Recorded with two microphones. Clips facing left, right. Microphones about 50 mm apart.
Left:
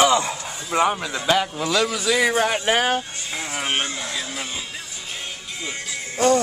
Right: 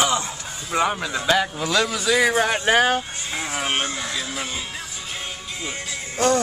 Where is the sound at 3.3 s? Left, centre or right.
Centre.